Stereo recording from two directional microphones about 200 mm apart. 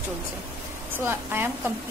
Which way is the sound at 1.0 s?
10° right (ahead or behind).